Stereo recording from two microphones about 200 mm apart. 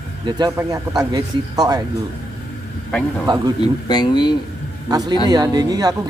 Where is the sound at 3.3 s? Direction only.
20° right (ahead or behind).